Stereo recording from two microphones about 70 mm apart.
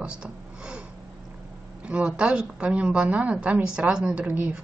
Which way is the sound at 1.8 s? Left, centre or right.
Centre.